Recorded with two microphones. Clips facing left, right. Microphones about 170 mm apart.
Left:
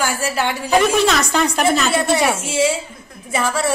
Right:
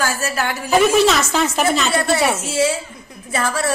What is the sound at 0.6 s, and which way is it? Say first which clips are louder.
A woman's voice: right 2 dB; 5° right (ahead or behind).